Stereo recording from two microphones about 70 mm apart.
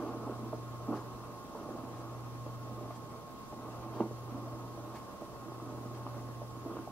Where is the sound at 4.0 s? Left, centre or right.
Centre.